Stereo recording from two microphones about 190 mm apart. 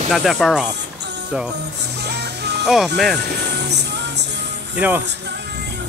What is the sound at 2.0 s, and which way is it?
Music, 60° right (ahead or behind).